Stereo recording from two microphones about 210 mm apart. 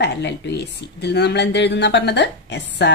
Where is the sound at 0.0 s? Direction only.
55° left (ahead or behind).